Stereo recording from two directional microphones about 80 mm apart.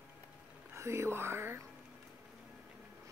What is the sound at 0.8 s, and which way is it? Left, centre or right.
Speech, right.